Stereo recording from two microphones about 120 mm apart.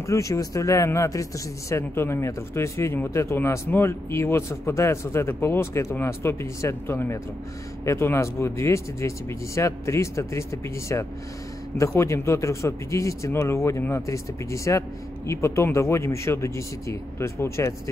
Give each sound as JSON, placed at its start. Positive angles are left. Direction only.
{"t": 0.0, "sound": "speech", "side_deg": 25}